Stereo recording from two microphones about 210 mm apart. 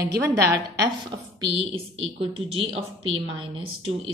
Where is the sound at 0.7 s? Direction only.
25° right (ahead or behind).